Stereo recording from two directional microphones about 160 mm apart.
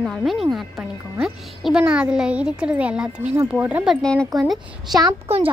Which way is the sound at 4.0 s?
5° left (ahead or behind).